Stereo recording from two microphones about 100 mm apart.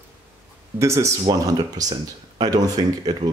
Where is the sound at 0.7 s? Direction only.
30° right (ahead or behind).